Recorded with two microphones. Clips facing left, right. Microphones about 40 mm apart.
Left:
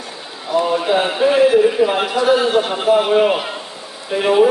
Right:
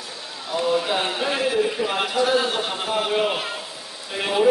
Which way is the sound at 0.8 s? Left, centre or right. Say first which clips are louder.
Left 8 dB; centre.